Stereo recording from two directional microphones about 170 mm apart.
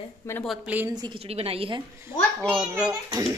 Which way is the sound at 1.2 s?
35° right (ahead or behind).